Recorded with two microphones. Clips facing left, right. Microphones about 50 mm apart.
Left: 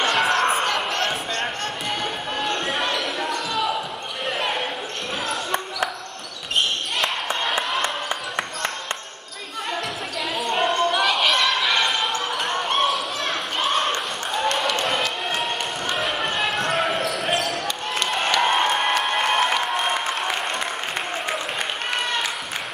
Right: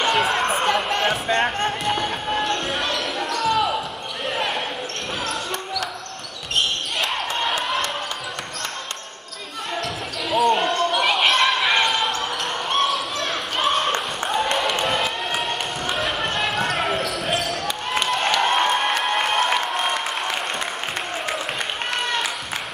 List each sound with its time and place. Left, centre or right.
0.0 s chatter: centre
1.3 s a sound: right
1.9 s music: centre
2.4 s basketball bounce: centre
10.3 s basketball bounce: centre
11.2 s a sound: centre
11.8 s basketball bounce: centre
14.9 s a sound: centre
18.1 s crowd: centre